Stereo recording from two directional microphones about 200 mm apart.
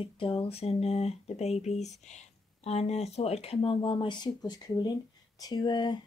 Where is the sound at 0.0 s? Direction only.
25° left (ahead or behind).